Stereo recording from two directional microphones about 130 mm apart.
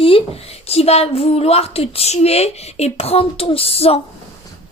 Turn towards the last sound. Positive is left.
turn(degrees=50)  # may be behind; listen again after turning